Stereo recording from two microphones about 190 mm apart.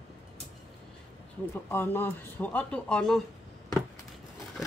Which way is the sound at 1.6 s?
10° left (ahead or behind).